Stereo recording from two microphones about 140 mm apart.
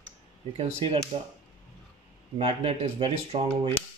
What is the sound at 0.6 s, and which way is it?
Speech, 45° right (ahead or behind).